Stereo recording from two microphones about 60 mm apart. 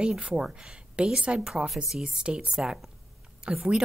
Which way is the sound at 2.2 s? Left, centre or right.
Centre.